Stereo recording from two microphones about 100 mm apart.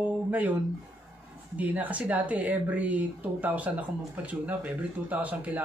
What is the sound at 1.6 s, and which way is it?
Speech, 15° right (ahead or behind).